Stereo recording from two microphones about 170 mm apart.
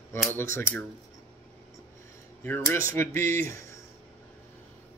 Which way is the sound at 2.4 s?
10° left (ahead or behind).